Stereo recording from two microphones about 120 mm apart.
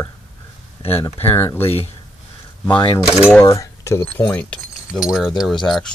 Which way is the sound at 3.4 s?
25° left (ahead or behind).